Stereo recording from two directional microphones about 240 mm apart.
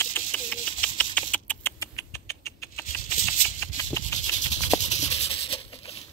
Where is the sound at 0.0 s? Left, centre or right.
Centre.